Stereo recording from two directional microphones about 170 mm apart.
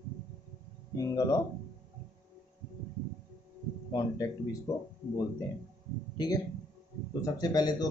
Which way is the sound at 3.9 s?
20° left (ahead or behind).